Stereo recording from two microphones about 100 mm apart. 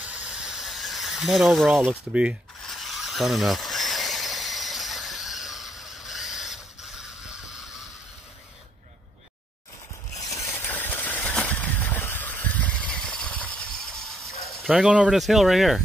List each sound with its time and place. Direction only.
0.0 s mechanisms: 10° right (ahead or behind)
1.9 s speech: 10° right (ahead or behind)
2.6 s a sound: centre (ahead or behind)
10.2 s rub: 35° left (ahead or behind)
10.6 s vehicle: 20° left (ahead or behind)
14.1 s a sound: centre (ahead or behind)
14.7 s speech: 10° right (ahead or behind)